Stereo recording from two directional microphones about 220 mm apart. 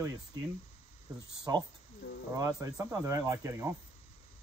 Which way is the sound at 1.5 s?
15° right (ahead or behind).